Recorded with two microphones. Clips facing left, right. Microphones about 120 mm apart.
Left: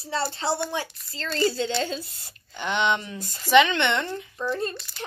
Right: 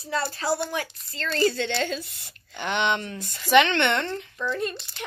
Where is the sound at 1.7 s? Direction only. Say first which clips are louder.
Even; 65° right (ahead or behind).